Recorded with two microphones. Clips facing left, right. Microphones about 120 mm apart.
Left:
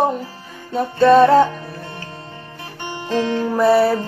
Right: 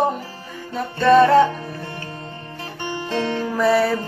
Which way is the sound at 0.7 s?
35° left (ahead or behind).